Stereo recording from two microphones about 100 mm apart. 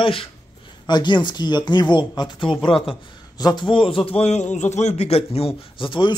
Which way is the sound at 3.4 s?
40° left (ahead or behind).